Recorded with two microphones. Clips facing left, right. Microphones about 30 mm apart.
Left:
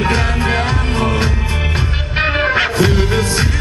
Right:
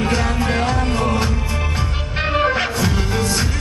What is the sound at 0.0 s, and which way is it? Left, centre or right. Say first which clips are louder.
Music: left 3 dB; left.